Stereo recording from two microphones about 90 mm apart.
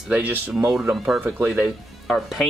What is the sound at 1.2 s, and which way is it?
Speech, 20° right (ahead or behind).